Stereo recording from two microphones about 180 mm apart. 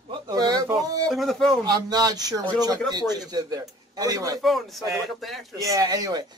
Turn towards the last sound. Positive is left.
turn(degrees=-20)  # may be behind; listen again after turning